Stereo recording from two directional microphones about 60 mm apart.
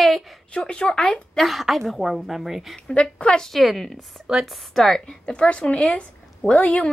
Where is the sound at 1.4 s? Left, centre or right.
Centre.